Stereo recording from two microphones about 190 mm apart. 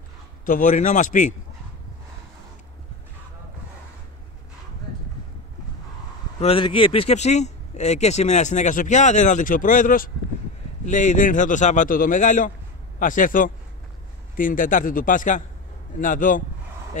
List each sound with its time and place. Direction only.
0.5 s speech: 40° left (ahead or behind)
6.4 s a man's voice: 25° left (ahead or behind)